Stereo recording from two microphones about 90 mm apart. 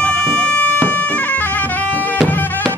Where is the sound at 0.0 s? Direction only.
15° left (ahead or behind).